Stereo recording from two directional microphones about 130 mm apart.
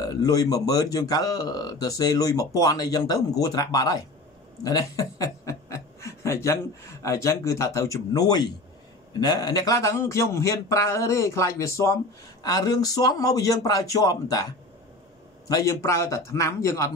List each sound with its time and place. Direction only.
0.0 s speech: 30° left (ahead or behind)